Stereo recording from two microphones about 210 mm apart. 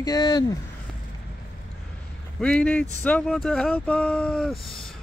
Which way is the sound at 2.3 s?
5° left (ahead or behind).